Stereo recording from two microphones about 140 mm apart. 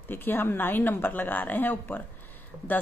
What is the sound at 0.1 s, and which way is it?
Speech, 15° left (ahead or behind).